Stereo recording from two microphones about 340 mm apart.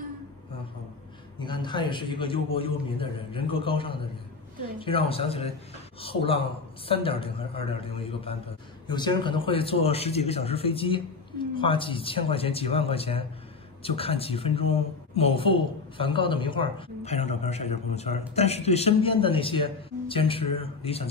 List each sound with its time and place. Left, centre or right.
1.4 s speech: centre